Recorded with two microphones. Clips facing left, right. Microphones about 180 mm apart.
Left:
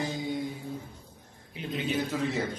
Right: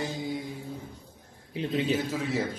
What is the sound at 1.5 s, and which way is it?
Speech, 30° right (ahead or behind).